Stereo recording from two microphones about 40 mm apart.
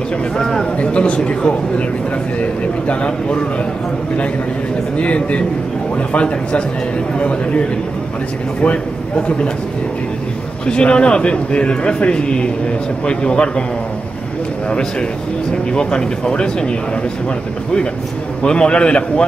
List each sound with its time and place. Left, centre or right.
0.4 s speech: centre
0.7 s a man's voice: left
4.9 s a man's voice: left
10.7 s a man's voice: left
15.7 s a man's voice: left
18.4 s a man's voice: left